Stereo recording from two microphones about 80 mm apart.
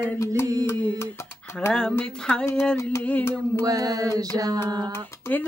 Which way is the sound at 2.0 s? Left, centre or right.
Centre.